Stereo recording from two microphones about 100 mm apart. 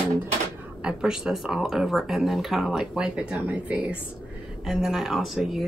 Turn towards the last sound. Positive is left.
turn(degrees=-5)  # may be behind; listen again after turning